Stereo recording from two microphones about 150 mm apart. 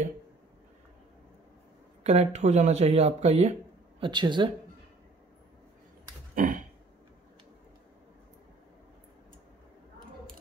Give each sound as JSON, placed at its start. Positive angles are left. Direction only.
{"t": 2.0, "sound": "speech", "side_deg": -50}
{"t": 4.0, "sound": "speech", "side_deg": -30}
{"t": 6.3, "sound": "a sound", "side_deg": -65}